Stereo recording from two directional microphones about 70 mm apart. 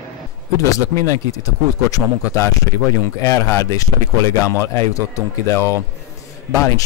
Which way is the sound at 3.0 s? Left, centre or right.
Left.